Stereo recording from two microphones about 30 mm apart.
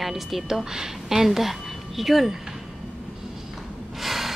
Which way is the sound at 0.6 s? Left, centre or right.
Centre.